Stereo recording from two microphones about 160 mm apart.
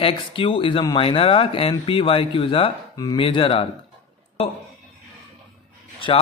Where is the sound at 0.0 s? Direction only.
35° left (ahead or behind).